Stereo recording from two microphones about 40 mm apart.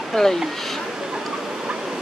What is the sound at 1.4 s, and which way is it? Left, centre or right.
Fowl, centre.